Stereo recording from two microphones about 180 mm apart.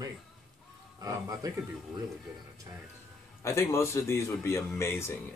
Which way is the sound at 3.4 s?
15° left (ahead or behind).